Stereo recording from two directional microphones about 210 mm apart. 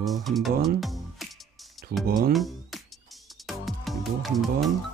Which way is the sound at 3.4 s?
Centre (ahead or behind).